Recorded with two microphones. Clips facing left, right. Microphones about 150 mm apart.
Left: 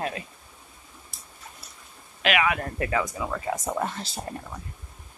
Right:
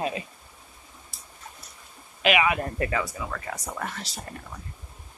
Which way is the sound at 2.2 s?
5° right (ahead or behind).